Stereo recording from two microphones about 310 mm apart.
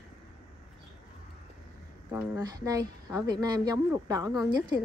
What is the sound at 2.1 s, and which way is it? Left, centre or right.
Speech, centre.